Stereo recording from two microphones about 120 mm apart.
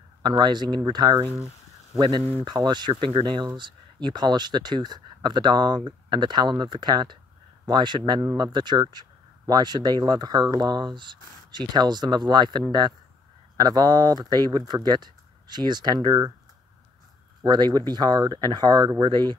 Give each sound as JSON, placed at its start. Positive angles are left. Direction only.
{"t": 0.2, "sound": "speech", "side_deg": -40}
{"t": 17.4, "sound": "speech", "side_deg": -35}